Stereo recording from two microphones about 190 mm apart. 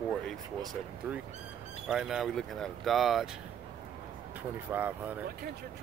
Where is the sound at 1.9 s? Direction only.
5° right (ahead or behind).